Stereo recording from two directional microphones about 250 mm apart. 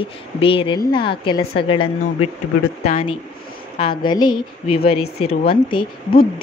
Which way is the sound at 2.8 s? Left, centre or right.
Left.